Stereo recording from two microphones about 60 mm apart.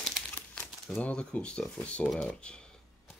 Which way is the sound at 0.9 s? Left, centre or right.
Centre.